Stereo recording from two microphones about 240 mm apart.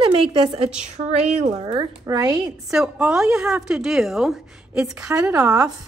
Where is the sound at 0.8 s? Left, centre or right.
Right.